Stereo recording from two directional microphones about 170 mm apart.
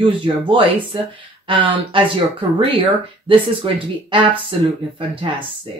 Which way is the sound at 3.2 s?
30° right (ahead or behind).